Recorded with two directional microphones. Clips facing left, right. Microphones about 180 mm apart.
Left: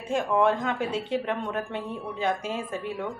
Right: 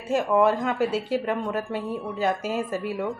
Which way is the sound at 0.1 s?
5° right (ahead or behind).